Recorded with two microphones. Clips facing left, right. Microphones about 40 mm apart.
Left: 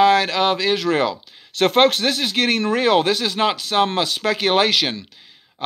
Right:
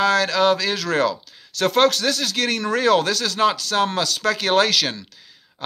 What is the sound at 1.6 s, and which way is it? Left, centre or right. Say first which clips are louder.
Speech: left 2 dB; left.